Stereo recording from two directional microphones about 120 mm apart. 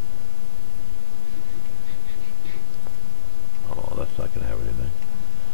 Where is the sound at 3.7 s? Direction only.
10° left (ahead or behind).